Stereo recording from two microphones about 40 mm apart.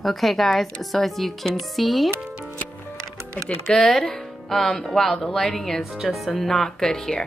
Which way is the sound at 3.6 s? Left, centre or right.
Centre.